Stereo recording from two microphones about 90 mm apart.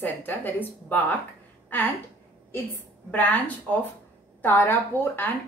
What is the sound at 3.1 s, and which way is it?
A woman's voice, 20° left (ahead or behind).